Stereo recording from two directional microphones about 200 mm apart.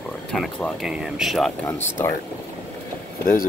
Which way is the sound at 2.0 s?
10° left (ahead or behind).